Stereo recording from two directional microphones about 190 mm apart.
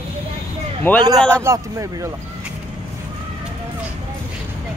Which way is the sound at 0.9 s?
10° left (ahead or behind).